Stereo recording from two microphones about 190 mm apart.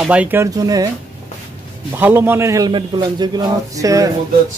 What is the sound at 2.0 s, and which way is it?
Speech, 10° right (ahead or behind).